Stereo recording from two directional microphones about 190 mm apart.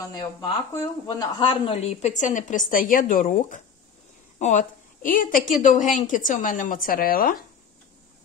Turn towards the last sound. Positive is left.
turn(degrees=50)  # may be behind; listen again after turning